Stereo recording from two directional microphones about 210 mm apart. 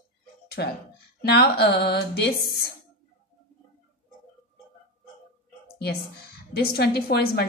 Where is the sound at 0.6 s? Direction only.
50° left (ahead or behind).